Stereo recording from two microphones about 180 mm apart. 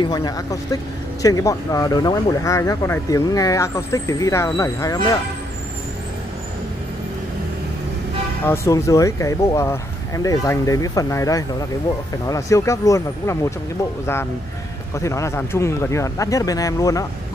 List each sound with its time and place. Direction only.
0.0 s speech: 20° left (ahead or behind)
8.5 s speech: 15° left (ahead or behind)
15.0 s speech: 15° left (ahead or behind)